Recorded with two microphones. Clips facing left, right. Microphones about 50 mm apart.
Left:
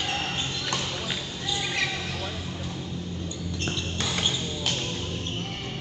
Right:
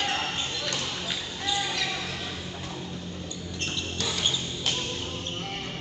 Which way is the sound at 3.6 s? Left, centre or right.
Left.